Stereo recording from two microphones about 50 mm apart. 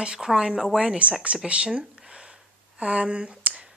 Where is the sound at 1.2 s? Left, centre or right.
Right.